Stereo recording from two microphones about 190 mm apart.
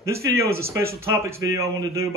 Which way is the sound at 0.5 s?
55° right (ahead or behind).